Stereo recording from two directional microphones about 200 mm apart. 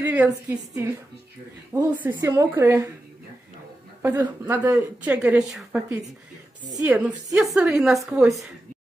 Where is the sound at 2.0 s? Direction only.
10° right (ahead or behind).